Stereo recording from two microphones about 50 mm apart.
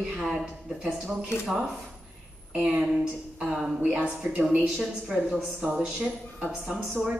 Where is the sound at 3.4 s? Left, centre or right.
Centre.